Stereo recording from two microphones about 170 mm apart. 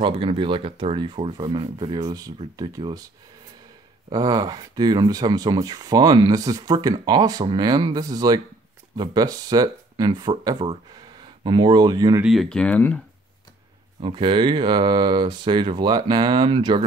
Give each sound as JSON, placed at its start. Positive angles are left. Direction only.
{"t": 0.0, "sound": "speech", "side_deg": -30}
{"t": 4.1, "sound": "speech", "side_deg": -25}
{"t": 12.2, "sound": "speech", "side_deg": 0}
{"t": 14.0, "sound": "speech", "side_deg": -30}